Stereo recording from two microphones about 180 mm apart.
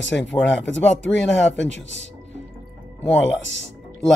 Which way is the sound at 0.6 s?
90° left.